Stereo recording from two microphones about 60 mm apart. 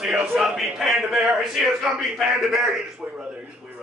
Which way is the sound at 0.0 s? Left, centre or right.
Centre.